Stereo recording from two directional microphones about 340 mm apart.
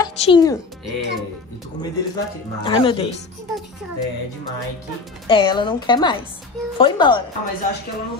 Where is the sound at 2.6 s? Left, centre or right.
Centre.